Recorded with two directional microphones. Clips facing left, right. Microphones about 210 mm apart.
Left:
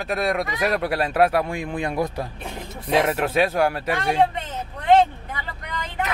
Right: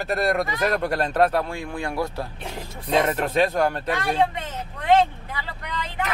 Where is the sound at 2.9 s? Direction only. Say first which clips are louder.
Left 1 dB; 5° left (ahead or behind).